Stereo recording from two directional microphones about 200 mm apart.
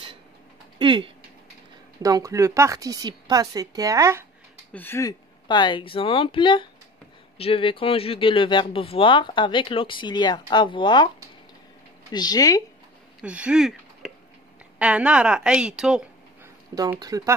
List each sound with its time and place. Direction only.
0.7 s a woman's voice: 25° right (ahead or behind)
4.7 s speech: 10° left (ahead or behind)
12.1 s speech: 20° left (ahead or behind)
13.2 s a woman's voice: 5° right (ahead or behind)
16.7 s a woman's voice: 20° right (ahead or behind)